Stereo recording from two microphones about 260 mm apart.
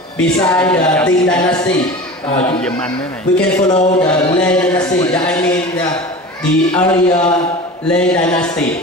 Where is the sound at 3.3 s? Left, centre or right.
Centre.